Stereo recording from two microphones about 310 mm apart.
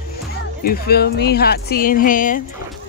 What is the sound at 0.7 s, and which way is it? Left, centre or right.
Speech, left.